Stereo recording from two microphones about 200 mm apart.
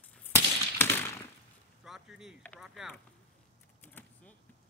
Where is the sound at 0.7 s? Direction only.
10° left (ahead or behind).